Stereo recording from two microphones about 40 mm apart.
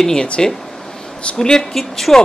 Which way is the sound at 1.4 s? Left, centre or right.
Centre.